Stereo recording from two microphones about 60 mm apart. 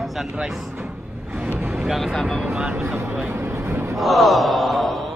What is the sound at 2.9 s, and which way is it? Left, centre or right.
Speech, right.